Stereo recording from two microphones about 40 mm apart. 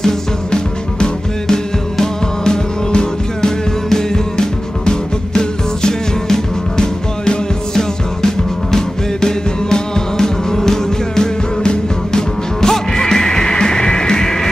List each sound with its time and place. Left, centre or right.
0.0 s music: left